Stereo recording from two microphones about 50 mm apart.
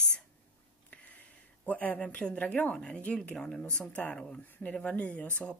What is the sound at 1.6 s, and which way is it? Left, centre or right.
A woman's voice, left.